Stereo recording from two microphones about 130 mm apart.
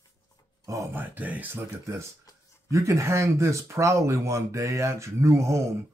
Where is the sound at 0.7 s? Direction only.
20° right (ahead or behind).